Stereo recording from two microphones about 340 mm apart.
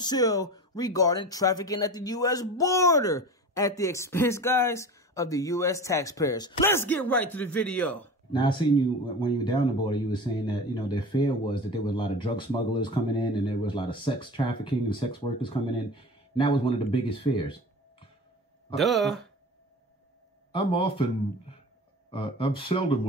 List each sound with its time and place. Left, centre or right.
0.0 s speech: centre
18.8 s speech: centre
20.5 s speech: centre
22.1 s speech: centre